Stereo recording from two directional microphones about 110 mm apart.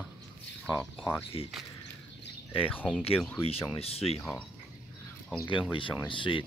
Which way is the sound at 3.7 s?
65° left (ahead or behind).